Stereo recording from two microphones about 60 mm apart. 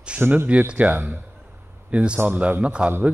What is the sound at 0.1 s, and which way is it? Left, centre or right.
A man's voice, centre.